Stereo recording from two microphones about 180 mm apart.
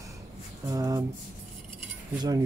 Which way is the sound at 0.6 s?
20° right (ahead or behind).